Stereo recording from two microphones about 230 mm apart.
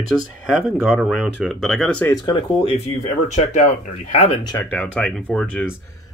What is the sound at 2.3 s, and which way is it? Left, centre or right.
Speech, left.